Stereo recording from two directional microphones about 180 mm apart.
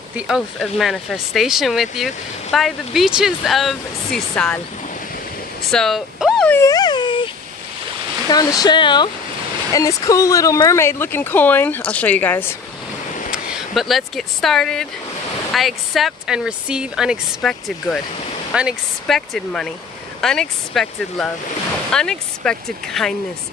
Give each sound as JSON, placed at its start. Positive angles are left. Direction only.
{"t": 0.1, "sound": "speech", "side_deg": 0}
{"t": 5.7, "sound": "speech", "side_deg": 0}
{"t": 6.5, "sound": "a sound", "side_deg": 20}
{"t": 8.3, "sound": "speech", "side_deg": 20}
{"t": 13.3, "sound": "speech", "side_deg": 0}